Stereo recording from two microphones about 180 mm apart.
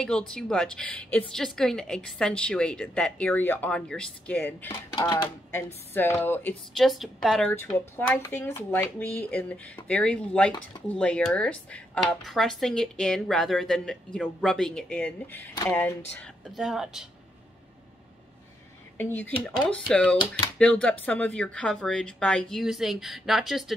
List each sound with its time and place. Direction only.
0.0 s speech: 5° left (ahead or behind)
4.9 s speech: 25° left (ahead or behind)
5.9 s speech: 10° left (ahead or behind)
6.7 s speech: centre (ahead or behind)
16.5 s speech: centre (ahead or behind)
18.9 s speech: 10° left (ahead or behind)